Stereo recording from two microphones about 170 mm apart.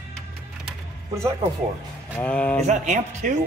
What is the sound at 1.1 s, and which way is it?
Speech, 15° right (ahead or behind).